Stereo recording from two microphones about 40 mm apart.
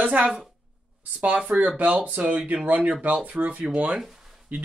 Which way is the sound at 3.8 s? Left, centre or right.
Centre.